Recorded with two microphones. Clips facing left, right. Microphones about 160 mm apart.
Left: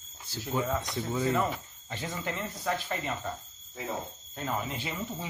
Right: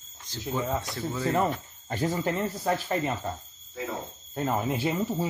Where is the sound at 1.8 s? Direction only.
40° right (ahead or behind).